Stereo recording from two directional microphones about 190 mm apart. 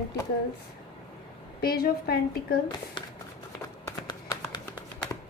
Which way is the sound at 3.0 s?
25° left (ahead or behind).